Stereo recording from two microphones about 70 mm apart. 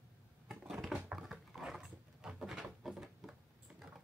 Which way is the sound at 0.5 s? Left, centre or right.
Centre.